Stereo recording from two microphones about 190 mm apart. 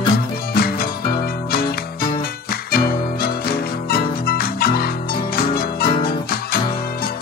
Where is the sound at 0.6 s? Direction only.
50° left (ahead or behind).